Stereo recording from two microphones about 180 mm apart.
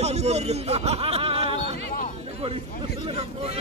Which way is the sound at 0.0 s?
35° right (ahead or behind).